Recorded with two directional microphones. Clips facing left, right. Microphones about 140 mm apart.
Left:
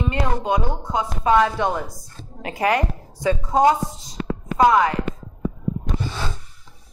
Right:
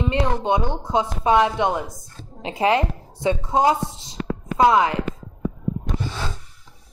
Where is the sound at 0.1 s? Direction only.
25° right (ahead or behind).